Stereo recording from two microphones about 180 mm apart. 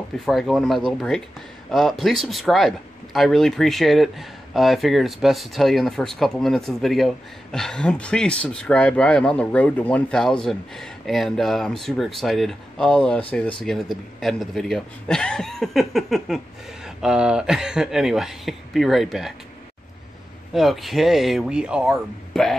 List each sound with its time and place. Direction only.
0.2 s speech: centre (ahead or behind)
20.5 s speech: centre (ahead or behind)